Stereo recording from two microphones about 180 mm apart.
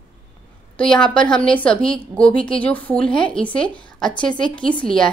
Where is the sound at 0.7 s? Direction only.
5° left (ahead or behind).